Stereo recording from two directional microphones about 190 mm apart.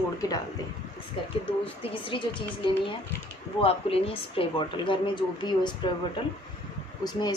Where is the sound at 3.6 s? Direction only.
30° left (ahead or behind).